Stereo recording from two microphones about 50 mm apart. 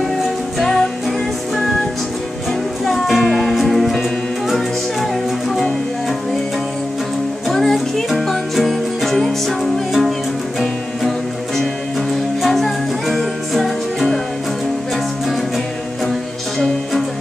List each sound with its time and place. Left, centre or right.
0.6 s music: centre
1.0 s music: centre
2.8 s music: centre
7.4 s music: centre
16.1 s music: centre